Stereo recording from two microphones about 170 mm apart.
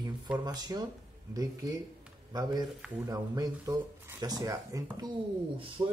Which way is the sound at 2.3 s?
25° right (ahead or behind).